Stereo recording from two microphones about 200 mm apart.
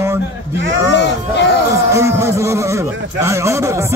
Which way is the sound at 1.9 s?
15° right (ahead or behind).